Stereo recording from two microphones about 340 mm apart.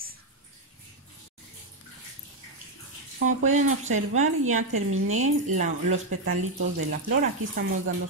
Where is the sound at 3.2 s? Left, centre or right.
Right.